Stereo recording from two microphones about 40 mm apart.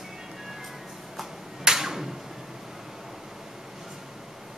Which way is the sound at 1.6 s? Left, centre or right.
Centre.